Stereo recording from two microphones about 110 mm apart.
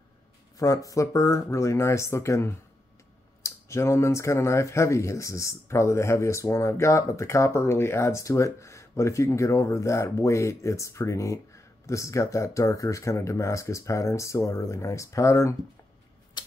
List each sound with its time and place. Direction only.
0.6 s speech: 30° left (ahead or behind)
16.4 s typewriter: 40° left (ahead or behind)